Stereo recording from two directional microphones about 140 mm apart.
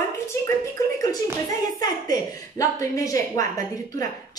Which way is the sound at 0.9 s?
25° left (ahead or behind).